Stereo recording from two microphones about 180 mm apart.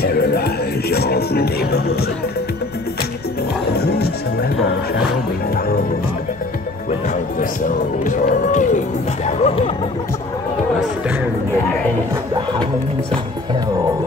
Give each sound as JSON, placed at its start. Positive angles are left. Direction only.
{"t": 0.0, "sound": "music", "side_deg": 60}
{"t": 3.7, "sound": "music", "side_deg": 65}
{"t": 7.3, "sound": "speech", "side_deg": 45}